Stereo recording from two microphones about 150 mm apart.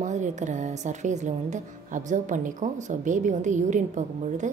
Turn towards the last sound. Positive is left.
turn(degrees=-55)  # may be behind; listen again after turning